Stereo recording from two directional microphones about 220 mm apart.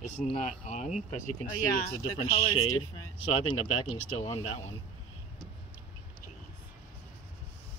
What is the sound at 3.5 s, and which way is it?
Speech, 25° left (ahead or behind).